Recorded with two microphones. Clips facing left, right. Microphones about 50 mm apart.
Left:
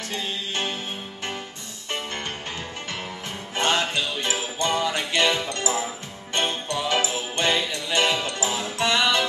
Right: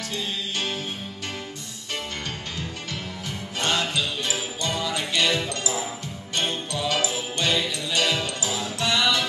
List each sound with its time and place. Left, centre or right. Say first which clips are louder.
0.1 s music: left 1 dB; left
3.5 s jingle bell: left 2 dB; left
6.3 s music: left 2 dB; left